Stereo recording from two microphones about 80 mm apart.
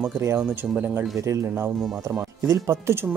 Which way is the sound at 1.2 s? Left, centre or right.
Right.